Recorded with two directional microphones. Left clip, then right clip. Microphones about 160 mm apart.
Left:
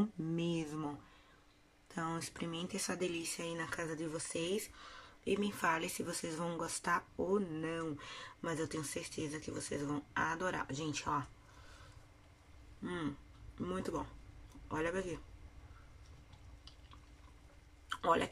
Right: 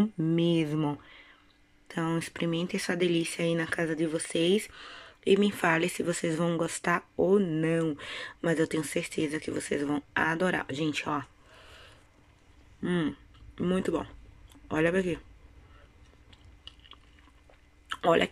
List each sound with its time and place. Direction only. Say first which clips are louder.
0.2 s speech: right 12 dB; 30° right (ahead or behind)
12.8 s speech: right 11 dB; 25° right (ahead or behind)
18.0 s speech: right 8 dB; 25° right (ahead or behind)